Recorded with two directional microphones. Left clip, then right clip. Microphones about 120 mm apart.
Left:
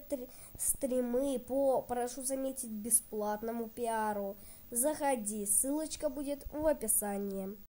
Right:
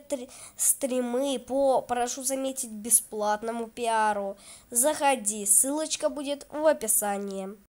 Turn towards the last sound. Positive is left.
turn(degrees=-20)  # may be behind; listen again after turning